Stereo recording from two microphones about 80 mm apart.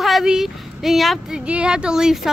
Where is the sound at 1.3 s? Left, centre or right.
Centre.